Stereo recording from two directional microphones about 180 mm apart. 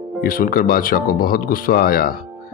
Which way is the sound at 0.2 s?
55° left (ahead or behind).